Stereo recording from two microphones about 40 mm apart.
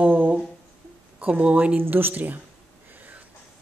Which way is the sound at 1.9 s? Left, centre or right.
Right.